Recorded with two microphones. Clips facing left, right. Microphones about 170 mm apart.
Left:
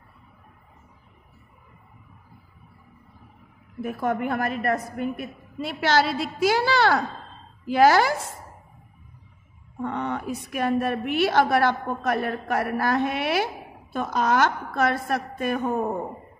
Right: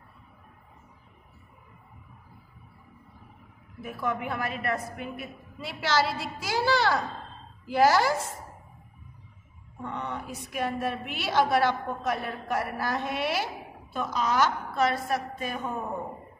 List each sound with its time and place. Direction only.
3.8 s a woman's voice: 50° left (ahead or behind)
9.8 s a woman's voice: 65° left (ahead or behind)